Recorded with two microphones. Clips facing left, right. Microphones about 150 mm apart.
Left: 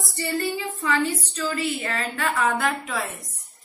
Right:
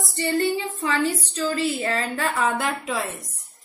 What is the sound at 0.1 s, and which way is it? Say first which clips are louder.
A woman's voice: right 4 dB; 20° right (ahead or behind).